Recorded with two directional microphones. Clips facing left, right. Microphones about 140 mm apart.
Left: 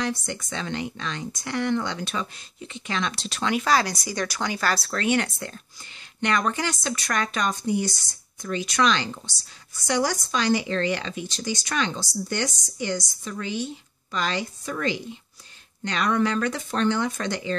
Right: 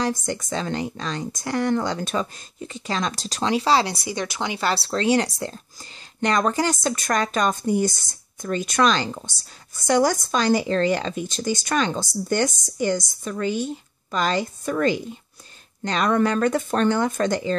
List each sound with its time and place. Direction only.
0.0 s speech: 40° right (ahead or behind)